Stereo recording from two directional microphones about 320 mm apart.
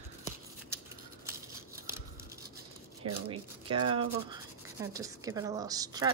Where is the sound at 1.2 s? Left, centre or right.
Centre.